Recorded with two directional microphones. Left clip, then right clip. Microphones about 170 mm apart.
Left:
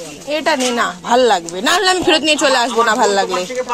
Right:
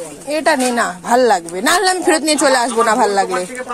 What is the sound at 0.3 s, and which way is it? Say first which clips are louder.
Speech: right 1 dB; 25° right (ahead or behind).